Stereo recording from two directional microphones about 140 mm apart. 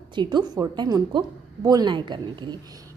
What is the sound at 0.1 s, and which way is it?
A woman's voice, 35° right (ahead or behind).